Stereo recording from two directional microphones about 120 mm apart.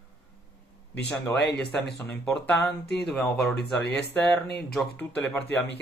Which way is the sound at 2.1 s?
15° left (ahead or behind).